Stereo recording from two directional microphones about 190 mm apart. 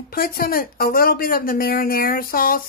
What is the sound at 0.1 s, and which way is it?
Speech, 50° left (ahead or behind).